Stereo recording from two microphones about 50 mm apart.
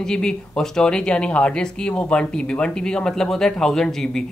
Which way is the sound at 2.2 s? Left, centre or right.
Centre.